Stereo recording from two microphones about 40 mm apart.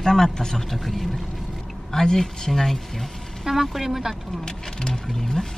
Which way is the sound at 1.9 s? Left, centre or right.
Centre.